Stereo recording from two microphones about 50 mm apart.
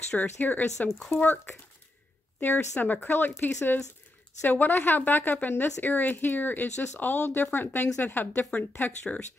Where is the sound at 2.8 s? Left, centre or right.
Left.